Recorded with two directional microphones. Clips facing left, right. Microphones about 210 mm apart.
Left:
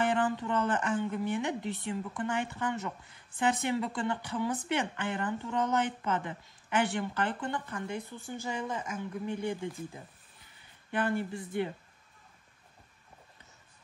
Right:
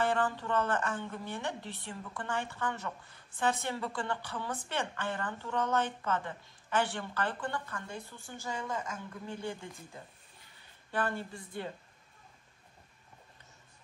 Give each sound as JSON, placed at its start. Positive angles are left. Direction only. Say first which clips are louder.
{"t": 0.0, "sound": "a woman's voice", "louder": "left 2 dB", "side_deg": 20}
{"t": 10.9, "sound": "a woman's voice", "louder": "left 4 dB", "side_deg": 20}